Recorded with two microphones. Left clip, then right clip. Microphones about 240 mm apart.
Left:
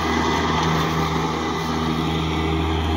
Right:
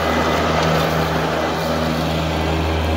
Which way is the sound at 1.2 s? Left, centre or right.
Right.